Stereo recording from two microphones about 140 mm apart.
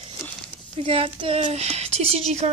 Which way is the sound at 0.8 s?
45° right (ahead or behind).